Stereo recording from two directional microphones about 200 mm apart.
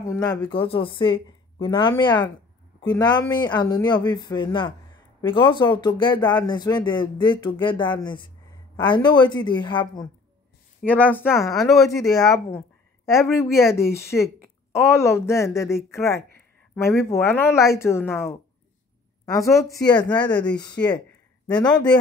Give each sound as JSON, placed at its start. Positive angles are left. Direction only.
{"t": 0.0, "sound": "speech", "side_deg": 20}
{"t": 10.9, "sound": "speech", "side_deg": 10}
{"t": 19.9, "sound": "speech", "side_deg": 20}